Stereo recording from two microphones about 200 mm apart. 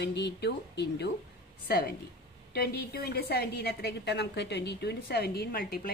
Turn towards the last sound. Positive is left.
turn(degrees=50)  # may be behind; listen again after turning